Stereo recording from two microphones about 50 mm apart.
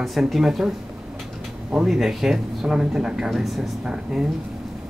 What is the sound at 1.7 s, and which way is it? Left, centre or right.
Speech, centre.